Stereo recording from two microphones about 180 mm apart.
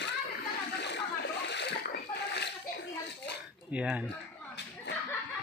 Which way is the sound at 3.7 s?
5° right (ahead or behind).